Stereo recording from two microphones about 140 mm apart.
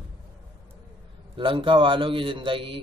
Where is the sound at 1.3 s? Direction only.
35° right (ahead or behind).